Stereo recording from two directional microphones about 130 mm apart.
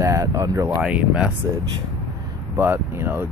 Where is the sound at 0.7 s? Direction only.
10° right (ahead or behind).